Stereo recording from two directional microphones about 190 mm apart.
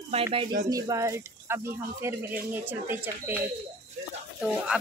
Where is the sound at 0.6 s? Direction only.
20° right (ahead or behind).